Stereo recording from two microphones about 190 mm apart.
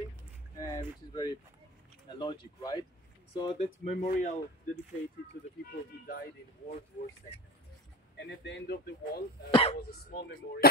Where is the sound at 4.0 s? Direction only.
40° left (ahead or behind).